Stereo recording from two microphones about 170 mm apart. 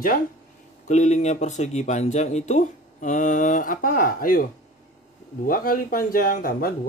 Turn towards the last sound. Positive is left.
turn(degrees=55)  # may be behind; listen again after turning